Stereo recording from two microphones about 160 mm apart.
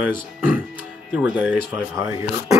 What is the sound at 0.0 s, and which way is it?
Speech, 10° right (ahead or behind).